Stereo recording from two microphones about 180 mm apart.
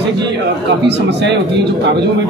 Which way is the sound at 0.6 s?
75° right (ahead or behind).